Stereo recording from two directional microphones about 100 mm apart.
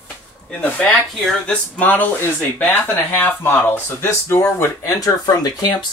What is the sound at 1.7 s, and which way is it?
Speech, 15° left (ahead or behind).